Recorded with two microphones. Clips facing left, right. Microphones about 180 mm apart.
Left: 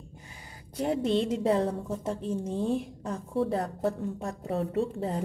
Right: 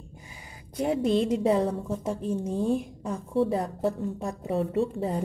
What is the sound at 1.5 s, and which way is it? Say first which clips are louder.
A woman's voice: right 2 dB; 10° right (ahead or behind).